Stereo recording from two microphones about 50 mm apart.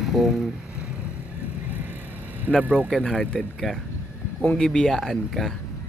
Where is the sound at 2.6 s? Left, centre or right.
Right.